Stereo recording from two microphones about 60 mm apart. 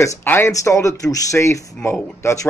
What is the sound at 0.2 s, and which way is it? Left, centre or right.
Speech, left.